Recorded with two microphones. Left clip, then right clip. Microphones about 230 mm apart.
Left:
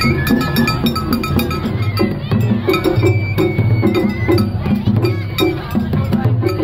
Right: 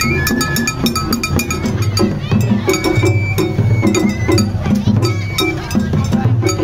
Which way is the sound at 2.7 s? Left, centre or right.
Centre.